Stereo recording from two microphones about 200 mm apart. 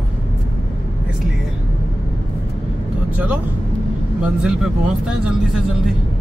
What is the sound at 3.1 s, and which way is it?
Speech, 5° right (ahead or behind).